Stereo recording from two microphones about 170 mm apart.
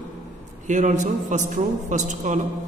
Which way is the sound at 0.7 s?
45° right (ahead or behind).